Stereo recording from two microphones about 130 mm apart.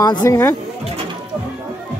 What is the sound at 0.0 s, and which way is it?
Speech, 30° left (ahead or behind).